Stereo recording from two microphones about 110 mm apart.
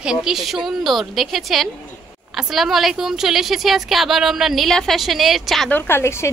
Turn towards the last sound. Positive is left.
turn(degrees=25)  # may be behind; listen again after turning